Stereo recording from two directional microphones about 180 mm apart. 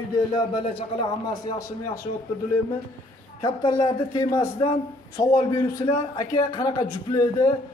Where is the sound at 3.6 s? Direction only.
25° left (ahead or behind).